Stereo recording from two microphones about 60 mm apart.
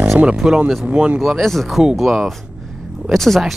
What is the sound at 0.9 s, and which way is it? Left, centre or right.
Speech, right.